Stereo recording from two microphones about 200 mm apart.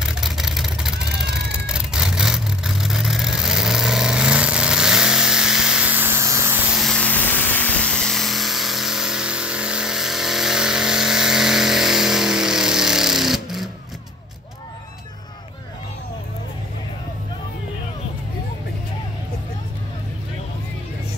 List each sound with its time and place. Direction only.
0.0 s vehicle: centre (ahead or behind)
0.9 s a sound: 60° right (ahead or behind)
1.7 s vehicle: 5° right (ahead or behind)
6.8 s vehicle: 5° left (ahead or behind)